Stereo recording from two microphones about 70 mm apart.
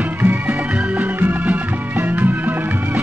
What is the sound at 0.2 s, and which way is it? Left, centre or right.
Music, right.